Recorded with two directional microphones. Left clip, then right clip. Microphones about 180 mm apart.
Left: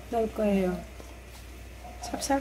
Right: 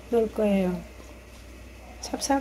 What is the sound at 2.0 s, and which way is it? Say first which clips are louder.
Speech: right 3 dB; 30° right (ahead or behind).